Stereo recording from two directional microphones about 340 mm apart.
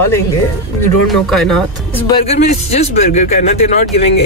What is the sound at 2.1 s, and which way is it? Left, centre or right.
Speech, centre.